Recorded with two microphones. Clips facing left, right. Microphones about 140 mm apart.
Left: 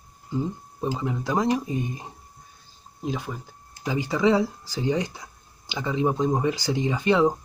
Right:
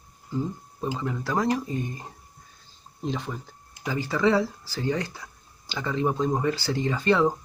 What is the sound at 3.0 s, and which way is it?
Speech, 5° left (ahead or behind).